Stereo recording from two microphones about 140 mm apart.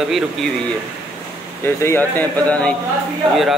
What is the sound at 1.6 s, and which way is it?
Speech, 15° left (ahead or behind).